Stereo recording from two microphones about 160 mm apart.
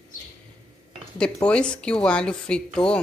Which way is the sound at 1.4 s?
5° left (ahead or behind).